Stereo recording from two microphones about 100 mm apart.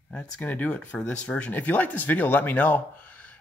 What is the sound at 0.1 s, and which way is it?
Speech, 15° left (ahead or behind).